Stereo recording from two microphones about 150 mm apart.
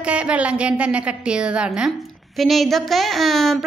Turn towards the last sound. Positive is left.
turn(degrees=0)  # may be behind; listen again after turning